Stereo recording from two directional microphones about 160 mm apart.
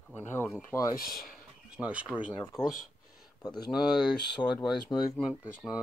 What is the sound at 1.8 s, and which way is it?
Speech, 5° right (ahead or behind).